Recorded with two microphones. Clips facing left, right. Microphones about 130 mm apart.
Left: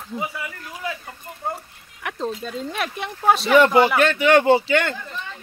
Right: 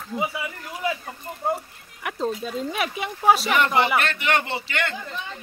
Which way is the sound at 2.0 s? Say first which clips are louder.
Right 1 dB; 5° right (ahead or behind).